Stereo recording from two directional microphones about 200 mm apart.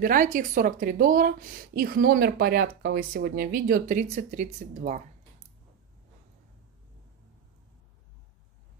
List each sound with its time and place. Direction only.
0.0 s speech: 45° right (ahead or behind)